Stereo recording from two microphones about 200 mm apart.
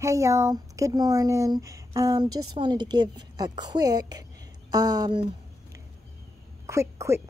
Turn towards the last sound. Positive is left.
turn(degrees=-15)  # may be behind; listen again after turning